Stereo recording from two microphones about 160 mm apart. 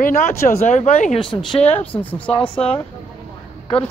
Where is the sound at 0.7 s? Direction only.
45° left (ahead or behind).